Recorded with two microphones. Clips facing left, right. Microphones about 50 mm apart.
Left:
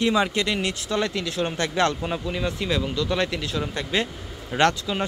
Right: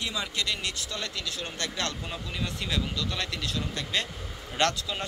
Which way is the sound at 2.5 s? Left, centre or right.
Centre.